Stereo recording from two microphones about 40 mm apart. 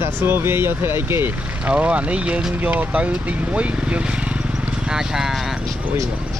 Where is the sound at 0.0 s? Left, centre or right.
Right.